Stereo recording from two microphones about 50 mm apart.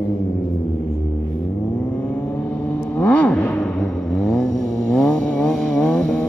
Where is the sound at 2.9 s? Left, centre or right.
Left.